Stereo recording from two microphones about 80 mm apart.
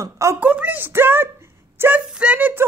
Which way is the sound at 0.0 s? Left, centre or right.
Right.